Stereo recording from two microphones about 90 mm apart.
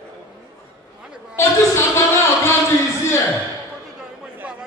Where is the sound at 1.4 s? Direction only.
30° left (ahead or behind).